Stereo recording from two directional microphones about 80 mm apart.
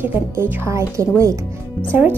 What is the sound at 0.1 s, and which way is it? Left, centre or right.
A woman's voice, right.